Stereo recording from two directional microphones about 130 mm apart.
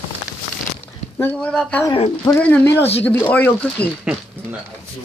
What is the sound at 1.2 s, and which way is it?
Speech, 5° left (ahead or behind).